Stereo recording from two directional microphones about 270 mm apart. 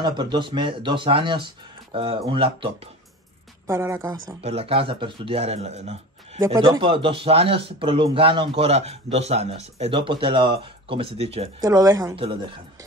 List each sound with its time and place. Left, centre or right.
0.0 s a man's voice: centre
6.4 s a man's voice: centre